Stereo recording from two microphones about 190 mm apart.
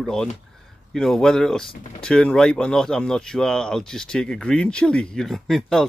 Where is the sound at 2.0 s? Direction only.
5° left (ahead or behind).